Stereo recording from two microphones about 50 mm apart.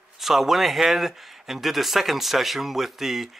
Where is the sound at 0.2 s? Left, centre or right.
Centre.